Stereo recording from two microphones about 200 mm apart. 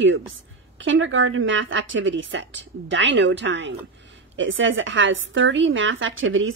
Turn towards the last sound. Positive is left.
turn(degrees=-75)  # may be behind; listen again after turning